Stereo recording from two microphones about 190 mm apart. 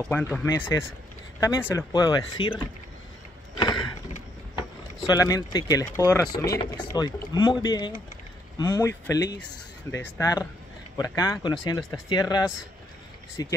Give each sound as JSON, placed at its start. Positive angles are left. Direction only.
{"t": 0.0, "sound": "speech", "side_deg": 10}
{"t": 3.5, "sound": "a sound", "side_deg": 20}
{"t": 4.6, "sound": "speech", "side_deg": 20}